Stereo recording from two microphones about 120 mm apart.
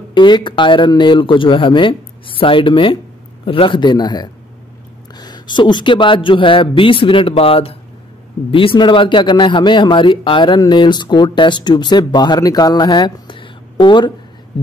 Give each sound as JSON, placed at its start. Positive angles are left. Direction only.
{"t": 0.1, "sound": "speech", "side_deg": 40}